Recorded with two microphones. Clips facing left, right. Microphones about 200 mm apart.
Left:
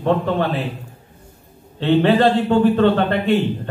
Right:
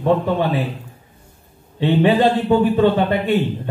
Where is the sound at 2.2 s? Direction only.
15° right (ahead or behind).